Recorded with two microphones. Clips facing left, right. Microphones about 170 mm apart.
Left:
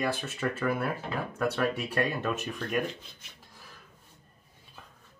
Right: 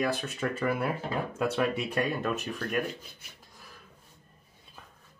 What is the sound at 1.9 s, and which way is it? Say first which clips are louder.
Speech: even; centre (ahead or behind).